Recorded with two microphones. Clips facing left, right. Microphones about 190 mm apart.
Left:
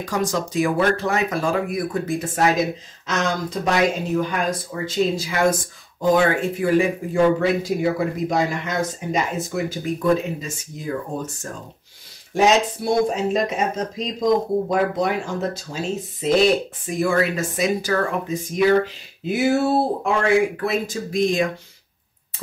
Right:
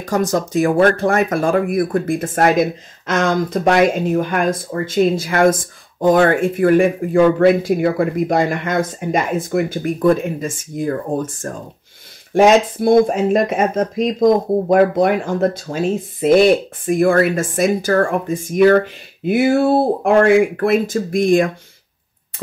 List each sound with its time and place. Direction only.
0.0 s speech: 45° right (ahead or behind)